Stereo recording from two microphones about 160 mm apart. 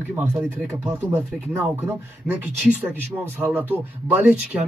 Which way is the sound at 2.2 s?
10° right (ahead or behind).